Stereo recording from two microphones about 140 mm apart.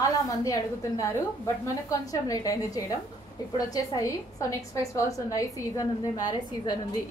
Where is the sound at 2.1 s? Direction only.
25° left (ahead or behind).